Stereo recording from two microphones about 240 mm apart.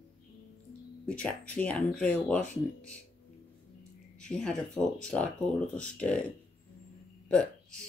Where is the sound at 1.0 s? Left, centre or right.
Centre.